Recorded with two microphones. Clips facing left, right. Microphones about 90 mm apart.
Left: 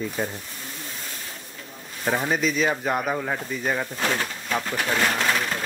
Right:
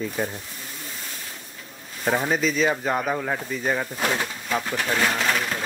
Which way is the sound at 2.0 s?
Centre (ahead or behind).